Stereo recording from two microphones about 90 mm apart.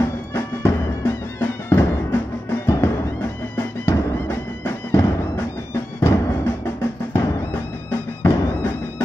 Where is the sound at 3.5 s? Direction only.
30° left (ahead or behind).